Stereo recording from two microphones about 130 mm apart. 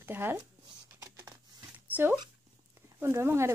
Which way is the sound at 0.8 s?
20° right (ahead or behind).